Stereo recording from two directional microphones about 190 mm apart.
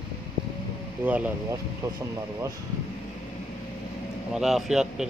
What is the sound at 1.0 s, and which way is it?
Speech, 10° right (ahead or behind).